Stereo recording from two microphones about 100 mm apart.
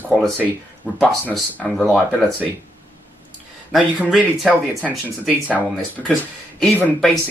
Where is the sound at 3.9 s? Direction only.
10° right (ahead or behind).